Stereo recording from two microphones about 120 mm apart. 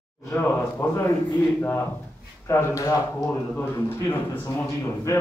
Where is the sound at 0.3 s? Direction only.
15° left (ahead or behind).